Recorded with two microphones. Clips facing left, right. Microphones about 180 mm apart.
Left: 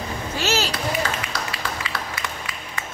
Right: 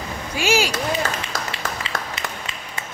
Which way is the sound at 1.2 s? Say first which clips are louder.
Right 1 dB; 25° right (ahead or behind).